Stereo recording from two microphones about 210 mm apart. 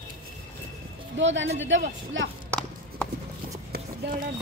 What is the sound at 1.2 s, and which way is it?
A woman's voice, 60° right (ahead or behind).